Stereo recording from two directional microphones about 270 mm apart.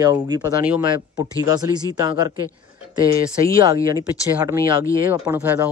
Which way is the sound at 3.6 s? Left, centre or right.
Centre.